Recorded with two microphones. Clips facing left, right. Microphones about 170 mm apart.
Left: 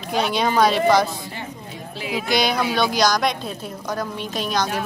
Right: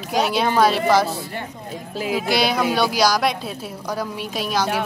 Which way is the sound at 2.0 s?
45° right (ahead or behind).